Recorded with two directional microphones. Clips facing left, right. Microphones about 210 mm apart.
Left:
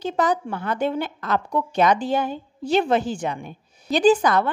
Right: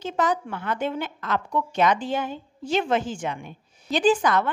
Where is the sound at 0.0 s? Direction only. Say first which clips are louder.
Left 3 dB; 35° left (ahead or behind).